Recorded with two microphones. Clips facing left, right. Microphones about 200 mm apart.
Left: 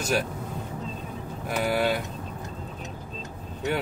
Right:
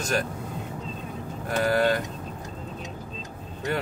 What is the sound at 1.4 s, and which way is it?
Speech, 10° left (ahead or behind).